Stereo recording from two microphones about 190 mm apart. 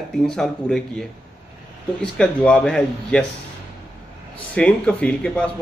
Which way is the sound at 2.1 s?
5° left (ahead or behind).